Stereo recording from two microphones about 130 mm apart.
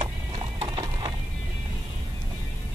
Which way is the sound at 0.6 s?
35° right (ahead or behind).